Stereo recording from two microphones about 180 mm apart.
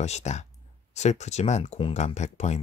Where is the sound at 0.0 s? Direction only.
40° left (ahead or behind).